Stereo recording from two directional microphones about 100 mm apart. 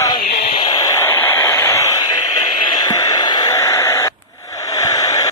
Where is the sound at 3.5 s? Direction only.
30° left (ahead or behind).